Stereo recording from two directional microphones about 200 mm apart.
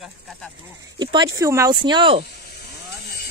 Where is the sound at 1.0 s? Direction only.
20° right (ahead or behind).